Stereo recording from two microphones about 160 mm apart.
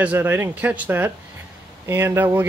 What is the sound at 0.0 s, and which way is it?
Speech, 10° right (ahead or behind).